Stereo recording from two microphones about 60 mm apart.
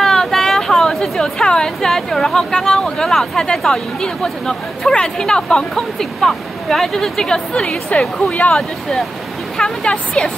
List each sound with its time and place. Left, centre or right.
0.0 s speech: centre
8.3 s speech: left
9.6 s a woman's voice: centre